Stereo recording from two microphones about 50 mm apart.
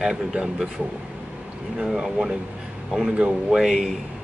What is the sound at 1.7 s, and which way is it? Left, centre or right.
Speech, centre.